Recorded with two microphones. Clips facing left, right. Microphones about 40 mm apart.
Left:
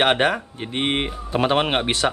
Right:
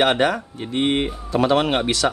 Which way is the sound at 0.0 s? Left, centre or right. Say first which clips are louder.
Even; left.